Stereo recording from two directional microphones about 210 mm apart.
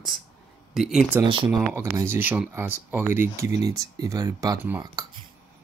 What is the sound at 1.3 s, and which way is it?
Speech, 25° right (ahead or behind).